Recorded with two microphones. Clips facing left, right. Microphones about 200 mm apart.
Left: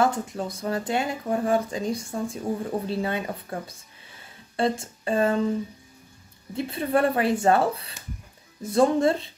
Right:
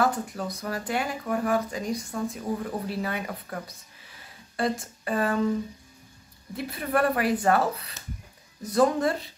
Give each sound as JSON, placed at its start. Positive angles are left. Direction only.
{"t": 0.0, "sound": "speech", "side_deg": 25}
{"t": 6.5, "sound": "speech", "side_deg": 25}